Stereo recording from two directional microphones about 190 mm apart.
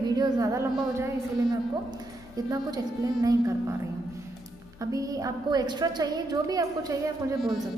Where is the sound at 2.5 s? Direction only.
20° right (ahead or behind).